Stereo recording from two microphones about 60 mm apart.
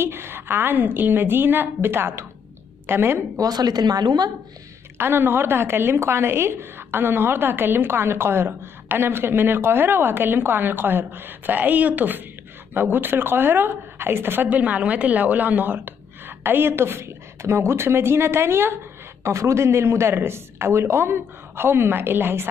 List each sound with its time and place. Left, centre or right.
0.0 s a woman's voice: right
3.3 s speech: right
4.9 s a woman's voice: right
19.2 s a woman's voice: right